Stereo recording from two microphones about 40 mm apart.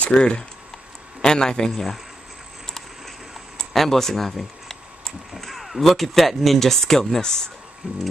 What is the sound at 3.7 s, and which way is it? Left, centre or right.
Speech, centre.